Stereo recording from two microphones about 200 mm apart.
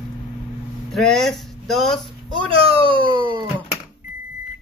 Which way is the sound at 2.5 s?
25° right (ahead or behind).